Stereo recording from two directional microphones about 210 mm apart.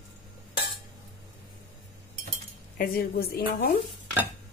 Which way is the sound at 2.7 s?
45° left (ahead or behind).